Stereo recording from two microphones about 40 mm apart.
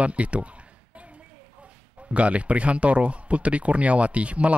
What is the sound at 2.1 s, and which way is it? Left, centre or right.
Speech, right.